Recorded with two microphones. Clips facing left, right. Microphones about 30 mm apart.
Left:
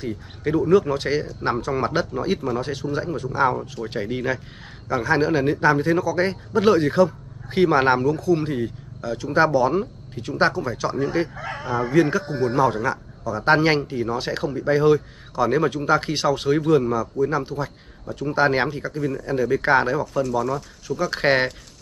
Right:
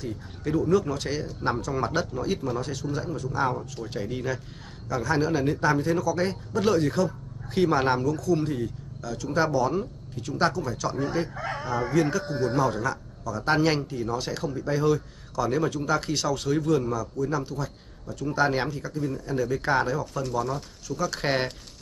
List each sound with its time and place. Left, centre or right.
0.0 s a man's voice: left
11.6 s speech: left
11.9 s a man's voice: left